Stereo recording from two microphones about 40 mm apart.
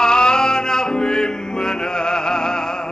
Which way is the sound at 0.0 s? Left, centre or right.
Centre.